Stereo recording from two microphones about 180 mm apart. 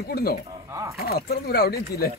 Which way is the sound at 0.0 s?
60° left (ahead or behind).